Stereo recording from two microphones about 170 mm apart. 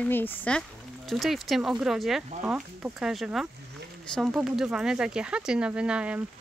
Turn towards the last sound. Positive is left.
turn(degrees=-5)  # may be behind; listen again after turning